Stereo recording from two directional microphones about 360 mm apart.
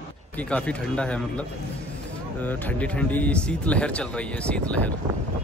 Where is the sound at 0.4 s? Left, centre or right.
Centre.